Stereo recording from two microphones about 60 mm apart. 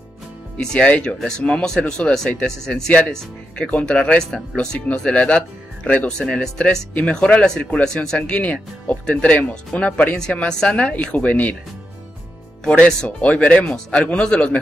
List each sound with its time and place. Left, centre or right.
0.6 s speech: centre
6.3 s speech: centre
8.2 s speech: left
12.6 s speech: centre